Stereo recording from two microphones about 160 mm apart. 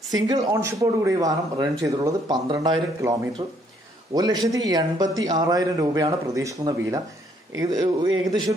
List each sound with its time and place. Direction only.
0.5 s speech: 20° right (ahead or behind)